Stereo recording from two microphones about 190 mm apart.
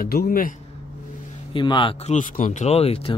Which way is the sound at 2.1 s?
40° left (ahead or behind).